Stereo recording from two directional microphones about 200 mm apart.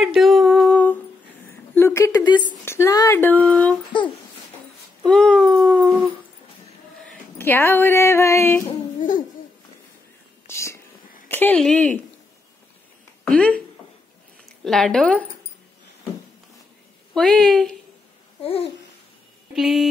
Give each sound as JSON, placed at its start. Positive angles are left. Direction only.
{"t": 0.0, "sound": "a sound", "side_deg": 0}
{"t": 1.8, "sound": "speech", "side_deg": 15}
{"t": 3.9, "sound": "a sound", "side_deg": 25}
{"t": 5.0, "sound": "dog", "side_deg": 5}
{"t": 7.3, "sound": "speech", "side_deg": 10}
{"t": 10.4, "sound": "whispering", "side_deg": 15}
{"t": 11.2, "sound": "speech", "side_deg": 10}
{"t": 13.2, "sound": "speech", "side_deg": 5}
{"t": 14.6, "sound": "a woman's voice", "side_deg": 0}
{"t": 17.1, "sound": "a woman's voice", "side_deg": 0}
{"t": 18.4, "sound": "babbling", "side_deg": 30}
{"t": 19.5, "sound": "a woman's voice", "side_deg": 0}